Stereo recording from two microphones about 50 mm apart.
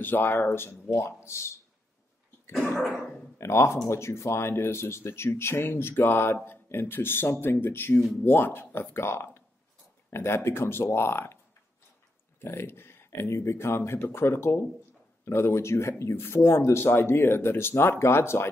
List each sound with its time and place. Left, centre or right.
0.0 s speech: left
0.9 s speech: left
3.3 s speech: left
12.4 s speech: left